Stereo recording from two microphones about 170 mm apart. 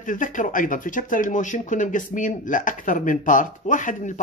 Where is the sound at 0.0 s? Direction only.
50° left (ahead or behind).